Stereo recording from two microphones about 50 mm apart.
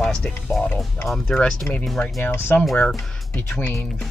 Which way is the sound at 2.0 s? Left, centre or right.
Left.